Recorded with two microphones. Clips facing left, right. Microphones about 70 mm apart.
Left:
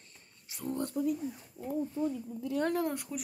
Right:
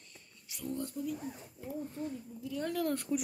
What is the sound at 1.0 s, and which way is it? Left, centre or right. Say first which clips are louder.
Speech: left 10 dB; left.